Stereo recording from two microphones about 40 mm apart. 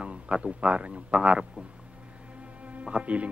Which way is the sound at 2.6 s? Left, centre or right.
Right.